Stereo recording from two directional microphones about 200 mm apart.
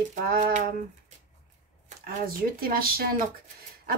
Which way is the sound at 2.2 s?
45° right (ahead or behind).